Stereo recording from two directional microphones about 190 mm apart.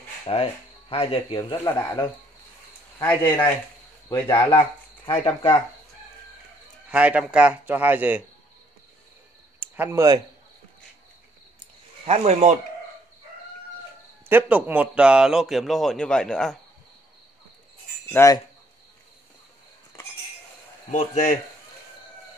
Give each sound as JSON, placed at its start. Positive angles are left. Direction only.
{"t": 0.3, "sound": "speech", "side_deg": 30}
{"t": 1.5, "sound": "speech", "side_deg": 10}
{"t": 4.3, "sound": "speech", "side_deg": 20}
{"t": 6.9, "sound": "speech", "side_deg": -5}
{"t": 9.6, "sound": "a sound", "side_deg": -10}
{"t": 12.1, "sound": "speech", "side_deg": -35}
{"t": 14.3, "sound": "a man's voice", "side_deg": -10}
{"t": 18.1, "sound": "speech", "side_deg": 15}
{"t": 20.9, "sound": "speech", "side_deg": 40}